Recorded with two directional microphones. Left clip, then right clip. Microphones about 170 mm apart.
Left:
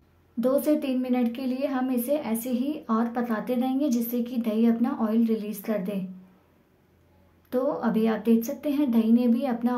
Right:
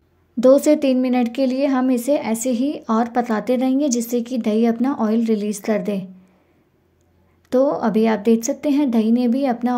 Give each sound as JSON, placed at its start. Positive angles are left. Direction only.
{"t": 0.4, "sound": "a woman's voice", "side_deg": -40}
{"t": 7.4, "sound": "a woman's voice", "side_deg": -35}